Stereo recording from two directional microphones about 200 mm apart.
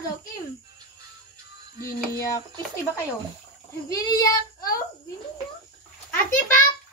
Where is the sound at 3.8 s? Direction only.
20° left (ahead or behind).